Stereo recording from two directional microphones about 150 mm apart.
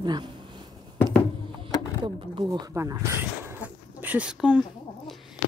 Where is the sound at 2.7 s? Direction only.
20° right (ahead or behind).